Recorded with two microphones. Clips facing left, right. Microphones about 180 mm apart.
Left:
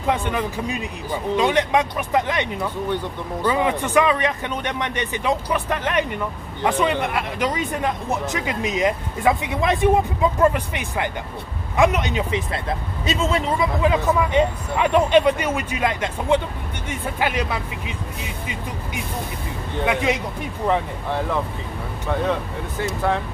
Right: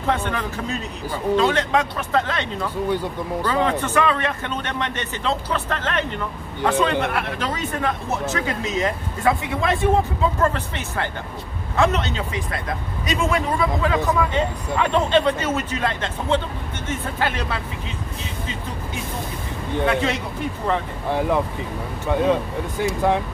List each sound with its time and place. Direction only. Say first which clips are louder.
0.0 s speech: left 1 dB; 15° left (ahead or behind)
19.8 s speech: even; 15° left (ahead or behind)
21.1 s speech: right 3 dB; 15° right (ahead or behind)